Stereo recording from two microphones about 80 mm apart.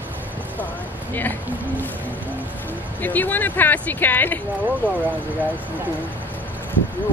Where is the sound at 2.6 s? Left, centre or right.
Left.